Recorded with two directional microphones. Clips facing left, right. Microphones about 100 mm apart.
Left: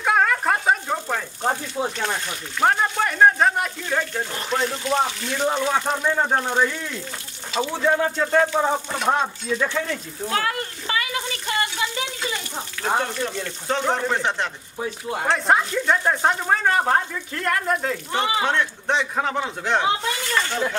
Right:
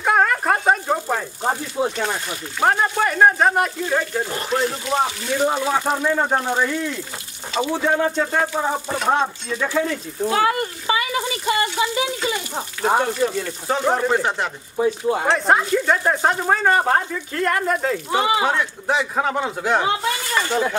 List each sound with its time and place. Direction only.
0.0 s a sound: 5° right (ahead or behind)
2.6 s speech: 5° right (ahead or behind)
7.6 s speech: 10° right (ahead or behind)